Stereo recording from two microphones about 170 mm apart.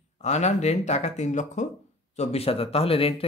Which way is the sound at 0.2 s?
40° left (ahead or behind).